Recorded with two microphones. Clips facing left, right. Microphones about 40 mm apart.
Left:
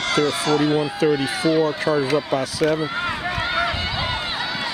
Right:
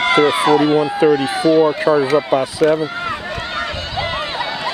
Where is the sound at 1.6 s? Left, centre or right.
Centre.